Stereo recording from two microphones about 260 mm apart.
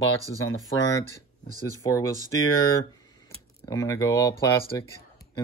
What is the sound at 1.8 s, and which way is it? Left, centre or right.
Speech, centre.